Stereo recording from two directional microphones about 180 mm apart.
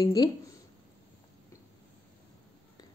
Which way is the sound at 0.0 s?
20° left (ahead or behind).